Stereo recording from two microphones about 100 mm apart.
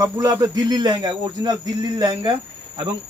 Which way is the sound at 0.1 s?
35° right (ahead or behind).